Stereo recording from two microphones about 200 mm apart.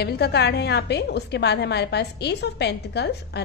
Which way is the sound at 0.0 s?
55° left (ahead or behind).